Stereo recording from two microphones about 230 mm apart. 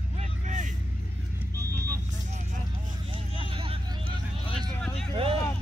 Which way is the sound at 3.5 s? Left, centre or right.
Right.